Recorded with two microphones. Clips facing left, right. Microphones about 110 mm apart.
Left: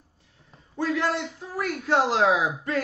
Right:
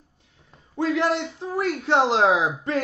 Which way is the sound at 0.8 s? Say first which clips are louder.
Right 3 dB; 25° right (ahead or behind).